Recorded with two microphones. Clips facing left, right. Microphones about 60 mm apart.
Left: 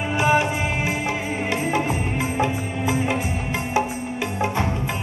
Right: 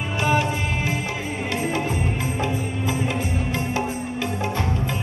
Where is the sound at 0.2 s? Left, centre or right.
Centre.